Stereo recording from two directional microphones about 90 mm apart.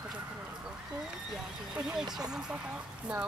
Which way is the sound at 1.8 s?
10° right (ahead or behind).